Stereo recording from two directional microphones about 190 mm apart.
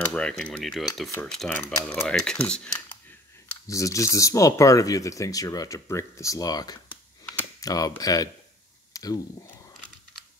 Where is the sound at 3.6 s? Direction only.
15° left (ahead or behind).